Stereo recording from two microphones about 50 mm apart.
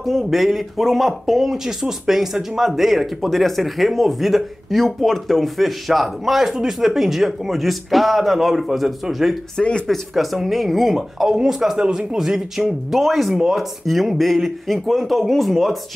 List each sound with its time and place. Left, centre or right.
0.0 s speech: centre
9.6 s speech: centre
9.8 s speech: centre